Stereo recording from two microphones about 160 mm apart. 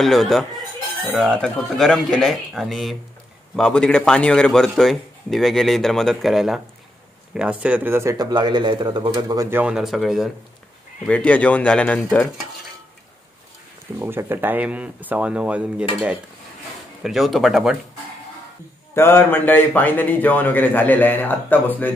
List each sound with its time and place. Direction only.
0.0 s a man's voice: centre (ahead or behind); by 9.5 s 30° right (ahead or behind)
9.5 s a man's voice: 10° right (ahead or behind); by 12.3 s 10° left (ahead or behind)
13.9 s speech: 15° right (ahead or behind)
17.0 s a man's voice: centre (ahead or behind)
18.9 s a man's voice: 15° left (ahead or behind)